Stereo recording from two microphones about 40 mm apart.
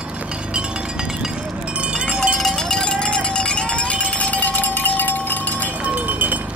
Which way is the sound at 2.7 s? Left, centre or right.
Centre.